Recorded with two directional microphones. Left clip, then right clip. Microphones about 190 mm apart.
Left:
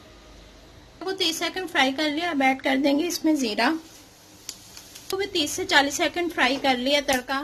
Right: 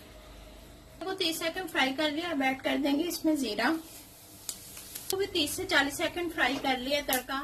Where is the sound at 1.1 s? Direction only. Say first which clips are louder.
Left 6 dB; 40° left (ahead or behind).